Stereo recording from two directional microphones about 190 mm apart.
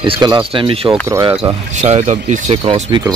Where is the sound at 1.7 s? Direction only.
40° right (ahead or behind).